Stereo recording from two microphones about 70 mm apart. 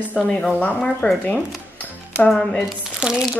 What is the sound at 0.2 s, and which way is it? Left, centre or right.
Speech, centre.